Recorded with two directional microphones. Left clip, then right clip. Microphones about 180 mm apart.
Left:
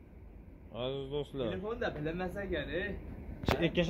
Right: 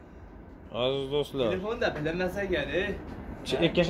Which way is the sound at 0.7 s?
5° right (ahead or behind).